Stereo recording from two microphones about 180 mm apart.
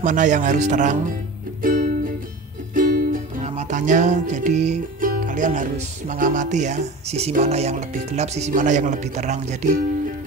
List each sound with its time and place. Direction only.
0.0 s speech: 45° right (ahead or behind)
1.6 s music: 45° right (ahead or behind)